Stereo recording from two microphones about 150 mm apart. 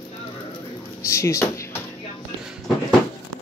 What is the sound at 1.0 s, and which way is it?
Speech, 20° left (ahead or behind).